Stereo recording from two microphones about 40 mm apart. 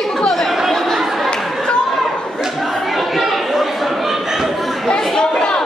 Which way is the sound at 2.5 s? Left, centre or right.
Centre.